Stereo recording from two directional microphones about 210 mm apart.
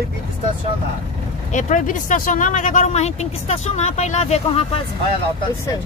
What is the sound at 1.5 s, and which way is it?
Speech, 40° left (ahead or behind).